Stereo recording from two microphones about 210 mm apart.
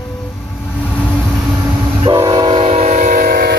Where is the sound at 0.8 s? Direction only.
5° left (ahead or behind).